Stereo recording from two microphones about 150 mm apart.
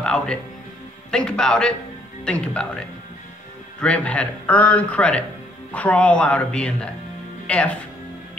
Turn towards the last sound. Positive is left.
turn(degrees=5)  # may be behind; listen again after turning